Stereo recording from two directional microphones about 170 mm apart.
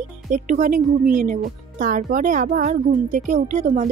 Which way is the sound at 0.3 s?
50° right (ahead or behind).